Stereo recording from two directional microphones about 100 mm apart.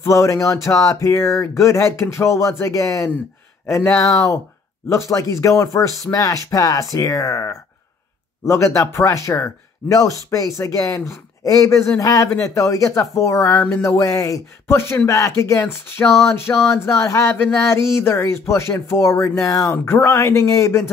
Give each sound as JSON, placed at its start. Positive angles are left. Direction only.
{"t": 0.0, "sound": "speech", "side_deg": 30}
{"t": 13.6, "sound": "a sound", "side_deg": 20}
{"t": 13.8, "sound": "speech", "side_deg": 35}